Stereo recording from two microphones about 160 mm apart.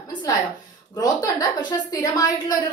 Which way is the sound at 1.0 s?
25° left (ahead or behind).